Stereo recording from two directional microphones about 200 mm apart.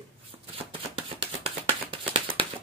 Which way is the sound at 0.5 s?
30° right (ahead or behind).